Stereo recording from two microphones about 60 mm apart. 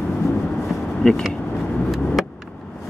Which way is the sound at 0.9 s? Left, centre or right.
Centre.